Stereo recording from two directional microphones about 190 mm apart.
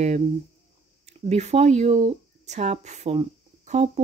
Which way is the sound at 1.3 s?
35° right (ahead or behind).